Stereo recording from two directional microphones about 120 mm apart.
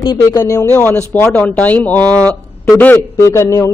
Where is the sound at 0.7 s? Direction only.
15° left (ahead or behind).